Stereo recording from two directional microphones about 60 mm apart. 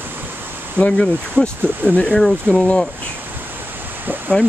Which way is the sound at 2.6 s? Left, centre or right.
Centre.